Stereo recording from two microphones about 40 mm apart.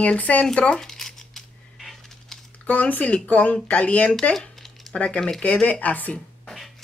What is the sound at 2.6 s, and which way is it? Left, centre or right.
Speech, left.